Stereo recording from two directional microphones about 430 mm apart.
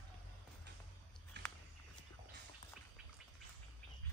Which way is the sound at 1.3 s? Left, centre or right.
Right.